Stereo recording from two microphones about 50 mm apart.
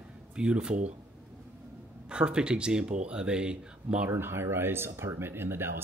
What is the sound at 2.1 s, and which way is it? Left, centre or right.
Speech, centre.